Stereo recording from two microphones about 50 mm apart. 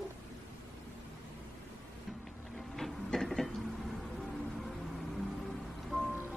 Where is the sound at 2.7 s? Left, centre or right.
Centre.